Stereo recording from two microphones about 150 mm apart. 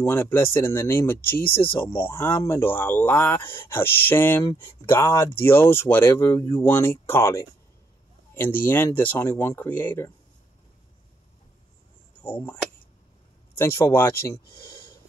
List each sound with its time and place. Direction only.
0.0 s speech: 15° left (ahead or behind)
12.2 s speech: 10° left (ahead or behind)
13.6 s speech: 15° left (ahead or behind)
14.5 s a sound: 20° left (ahead or behind)